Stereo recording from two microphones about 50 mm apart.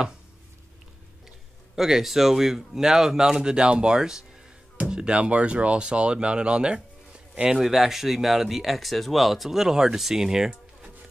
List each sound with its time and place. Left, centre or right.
1.8 s speech: centre
7.4 s speech: centre